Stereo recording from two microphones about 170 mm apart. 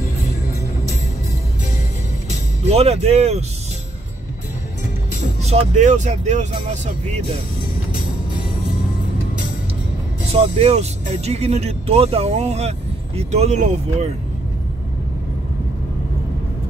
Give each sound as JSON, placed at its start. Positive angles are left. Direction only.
{"t": 2.6, "sound": "speech", "side_deg": -40}
{"t": 5.4, "sound": "speech", "side_deg": -40}
{"t": 10.3, "sound": "speech", "side_deg": -35}